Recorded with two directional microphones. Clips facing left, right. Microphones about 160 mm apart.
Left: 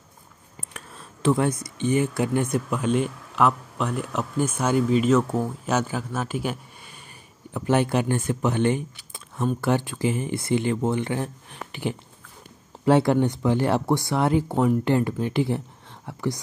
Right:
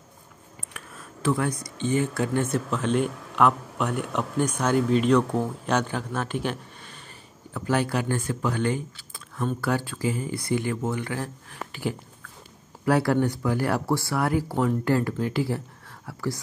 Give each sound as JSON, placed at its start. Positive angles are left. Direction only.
{"t": 0.7, "sound": "speech", "side_deg": 25}
{"t": 7.5, "sound": "speech", "side_deg": 20}
{"t": 16.1, "sound": "whispering", "side_deg": 20}